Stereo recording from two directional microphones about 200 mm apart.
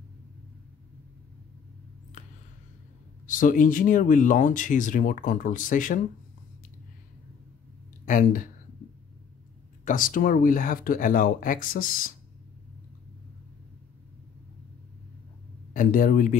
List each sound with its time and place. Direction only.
3.3 s speech: 40° left (ahead or behind)
8.0 s speech: 40° left (ahead or behind)
9.8 s speech: 45° left (ahead or behind)
15.7 s speech: 45° left (ahead or behind)